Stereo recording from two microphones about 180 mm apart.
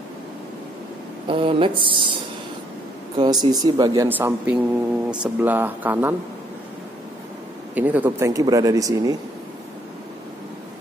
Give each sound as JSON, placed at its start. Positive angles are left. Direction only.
{"t": 1.2, "sound": "speech", "side_deg": -30}
{"t": 3.2, "sound": "speech", "side_deg": -20}
{"t": 7.7, "sound": "speech", "side_deg": -10}